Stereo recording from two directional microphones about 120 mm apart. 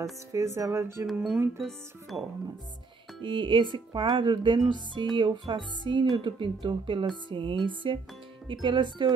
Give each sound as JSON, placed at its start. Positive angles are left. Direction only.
{"t": 0.3, "sound": "speech", "side_deg": -25}
{"t": 1.1, "sound": "speech", "side_deg": -5}
{"t": 3.2, "sound": "music", "side_deg": -45}
{"t": 5.5, "sound": "speech", "side_deg": -40}
{"t": 8.5, "sound": "music", "side_deg": -40}